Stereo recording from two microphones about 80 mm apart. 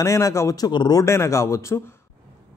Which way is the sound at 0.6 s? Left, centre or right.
Left.